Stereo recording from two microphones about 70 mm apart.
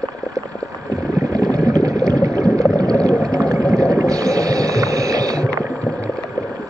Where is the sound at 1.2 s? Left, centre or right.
Right.